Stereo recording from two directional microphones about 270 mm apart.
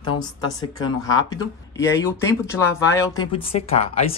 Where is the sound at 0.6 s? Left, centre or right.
Centre.